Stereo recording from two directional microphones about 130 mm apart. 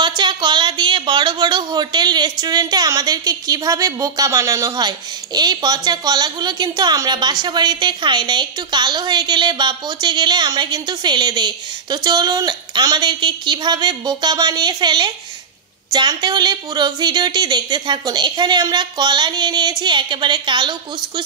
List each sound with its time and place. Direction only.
0.0 s speech: 35° right (ahead or behind)